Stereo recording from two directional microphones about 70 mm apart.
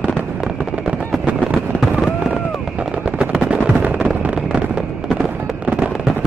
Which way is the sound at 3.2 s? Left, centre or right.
Centre.